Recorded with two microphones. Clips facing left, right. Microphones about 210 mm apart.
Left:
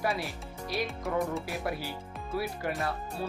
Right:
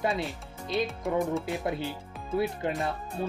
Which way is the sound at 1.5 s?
20° right (ahead or behind).